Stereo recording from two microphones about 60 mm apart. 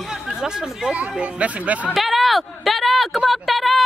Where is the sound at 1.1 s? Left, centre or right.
Centre.